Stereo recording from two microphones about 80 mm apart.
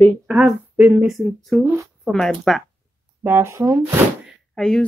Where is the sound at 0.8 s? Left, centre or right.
Right.